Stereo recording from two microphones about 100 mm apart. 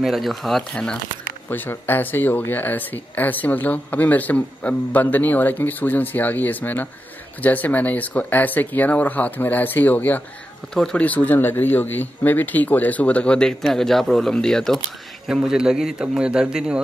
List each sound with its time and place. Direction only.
0.0 s a man's voice: centre (ahead or behind)
1.5 s speech: 20° left (ahead or behind)
10.7 s a man's voice: 5° left (ahead or behind)
15.2 s a man's voice: 5° right (ahead or behind)